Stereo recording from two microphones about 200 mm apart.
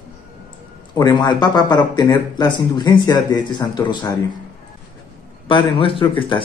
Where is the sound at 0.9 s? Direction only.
20° left (ahead or behind).